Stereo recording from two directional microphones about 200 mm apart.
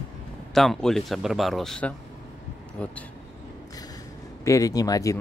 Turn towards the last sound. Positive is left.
turn(degrees=15)  # may be behind; listen again after turning